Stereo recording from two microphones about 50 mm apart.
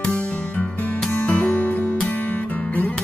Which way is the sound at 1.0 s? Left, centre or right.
Left.